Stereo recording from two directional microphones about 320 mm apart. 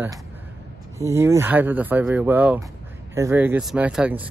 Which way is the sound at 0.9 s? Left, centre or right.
Centre.